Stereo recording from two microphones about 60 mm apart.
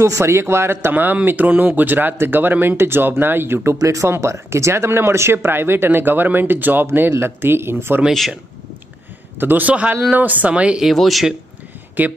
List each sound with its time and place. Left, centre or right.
0.0 s speech: right
0.9 s speech: right
3.7 s speech: right
4.1 s speech: right
9.4 s speech: right
10.9 s speech: centre
12.0 s speech: right